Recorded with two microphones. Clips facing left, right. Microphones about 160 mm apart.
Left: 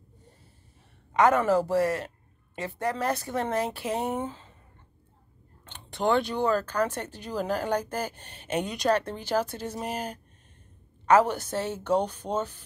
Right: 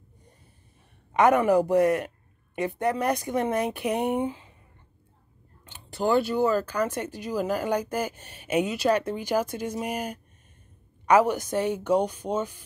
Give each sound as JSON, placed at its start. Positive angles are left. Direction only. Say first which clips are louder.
{"t": 1.1, "sound": "a woman's voice", "louder": "right 2 dB", "side_deg": -20}
{"t": 5.7, "sound": "speech", "louder": "right 1 dB", "side_deg": -5}